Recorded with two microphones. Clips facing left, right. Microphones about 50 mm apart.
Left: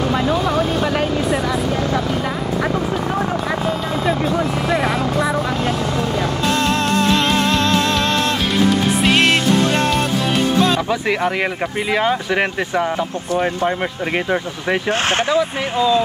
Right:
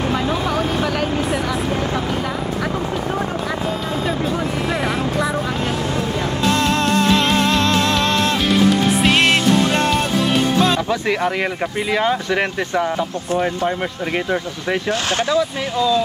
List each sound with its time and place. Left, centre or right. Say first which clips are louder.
0.3 s vehicle: left 2 dB; centre
4.6 s vehicle: left 2 dB; centre
6.4 s music: right 2 dB; centre
11.9 s speech: left 1 dB; centre
14.9 s speech: left 2 dB; left